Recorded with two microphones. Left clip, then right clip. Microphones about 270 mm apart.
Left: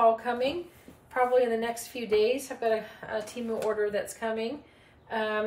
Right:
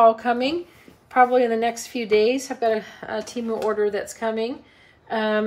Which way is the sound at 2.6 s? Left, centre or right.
Right.